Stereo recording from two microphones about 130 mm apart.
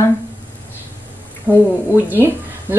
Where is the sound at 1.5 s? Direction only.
15° left (ahead or behind).